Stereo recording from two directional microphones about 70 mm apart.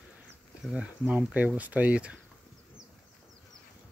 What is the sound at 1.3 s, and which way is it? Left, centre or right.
Speech, right.